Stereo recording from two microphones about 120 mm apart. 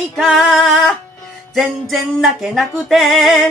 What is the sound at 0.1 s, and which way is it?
Music, centre (ahead or behind).